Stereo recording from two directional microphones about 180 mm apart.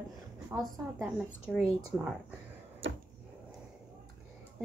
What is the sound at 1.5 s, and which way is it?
Speech, 5° right (ahead or behind).